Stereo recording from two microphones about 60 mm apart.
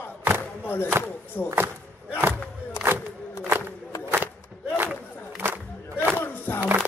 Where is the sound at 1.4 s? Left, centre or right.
Left.